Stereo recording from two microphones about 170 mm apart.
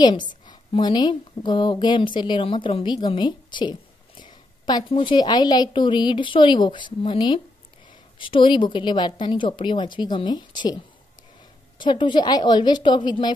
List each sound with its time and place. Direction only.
0.0 s a woman's voice: 25° left (ahead or behind)
11.8 s a woman's voice: 30° left (ahead or behind)